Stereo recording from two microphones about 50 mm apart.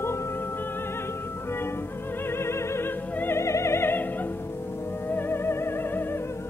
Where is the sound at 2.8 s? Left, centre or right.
Left.